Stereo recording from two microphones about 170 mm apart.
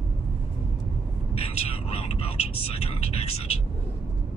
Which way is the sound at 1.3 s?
35° left (ahead or behind).